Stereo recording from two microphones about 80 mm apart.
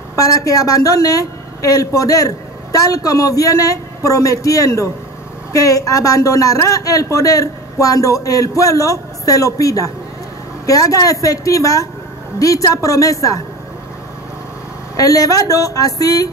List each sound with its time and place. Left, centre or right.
0.1 s a woman's voice: left
15.0 s a woman's voice: left